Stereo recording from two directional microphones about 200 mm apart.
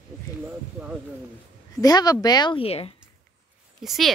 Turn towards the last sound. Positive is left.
turn(degrees=0)  # may be behind; listen again after turning